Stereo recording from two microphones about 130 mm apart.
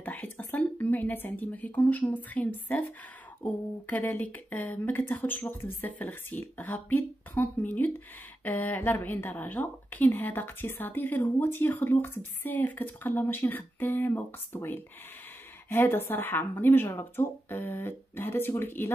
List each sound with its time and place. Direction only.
0.0 s a woman's voice: 15° left (ahead or behind)